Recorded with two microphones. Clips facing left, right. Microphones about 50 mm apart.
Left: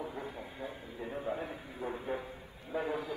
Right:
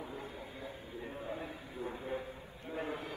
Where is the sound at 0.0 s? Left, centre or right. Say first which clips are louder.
Left 3 dB; left.